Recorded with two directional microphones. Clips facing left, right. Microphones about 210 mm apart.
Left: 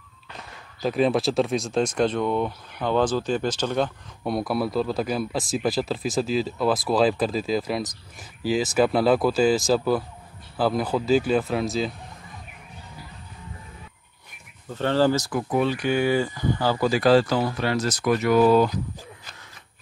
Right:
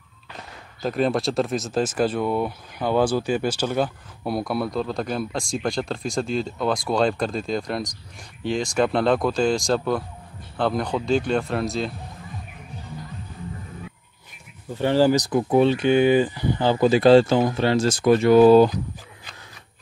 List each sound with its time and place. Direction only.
0.8 s speech: centre (ahead or behind)
14.7 s speech: 15° right (ahead or behind); by 18.7 s 30° right (ahead or behind)